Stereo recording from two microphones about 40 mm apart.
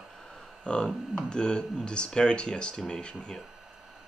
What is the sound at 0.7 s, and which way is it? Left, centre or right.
Speech, left.